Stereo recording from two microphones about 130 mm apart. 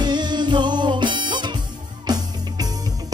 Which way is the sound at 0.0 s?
35° right (ahead or behind).